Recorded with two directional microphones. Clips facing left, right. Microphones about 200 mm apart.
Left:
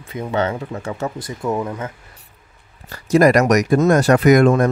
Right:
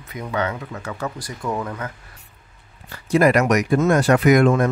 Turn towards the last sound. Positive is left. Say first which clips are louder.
# left 3 dB
turn(degrees=40)  # may be behind; listen again after turning